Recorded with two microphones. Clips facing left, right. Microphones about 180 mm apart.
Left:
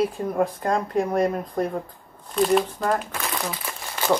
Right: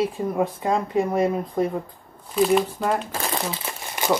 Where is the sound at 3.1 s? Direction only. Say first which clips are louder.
Right 2 dB; 30° right (ahead or behind).